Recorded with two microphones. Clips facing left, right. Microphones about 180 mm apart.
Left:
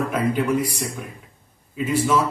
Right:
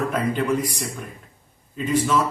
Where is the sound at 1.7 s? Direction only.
10° left (ahead or behind).